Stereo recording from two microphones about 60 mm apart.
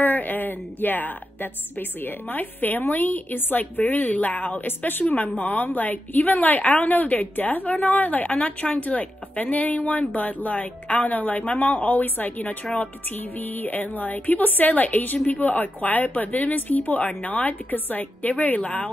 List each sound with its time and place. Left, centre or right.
0.0 s a woman's voice: left